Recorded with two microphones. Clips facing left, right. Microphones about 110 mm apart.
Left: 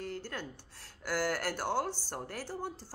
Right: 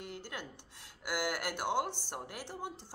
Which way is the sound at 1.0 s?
15° right (ahead or behind).